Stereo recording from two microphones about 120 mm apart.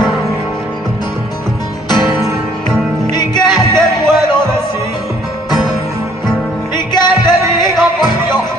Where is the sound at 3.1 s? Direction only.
35° left (ahead or behind).